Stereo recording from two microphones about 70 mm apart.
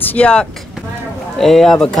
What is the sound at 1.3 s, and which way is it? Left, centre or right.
Speech, centre.